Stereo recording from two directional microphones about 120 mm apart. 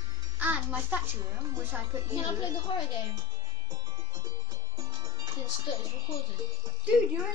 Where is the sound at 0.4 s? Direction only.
15° right (ahead or behind).